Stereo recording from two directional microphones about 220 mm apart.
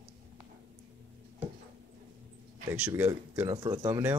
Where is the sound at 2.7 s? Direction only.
10° right (ahead or behind).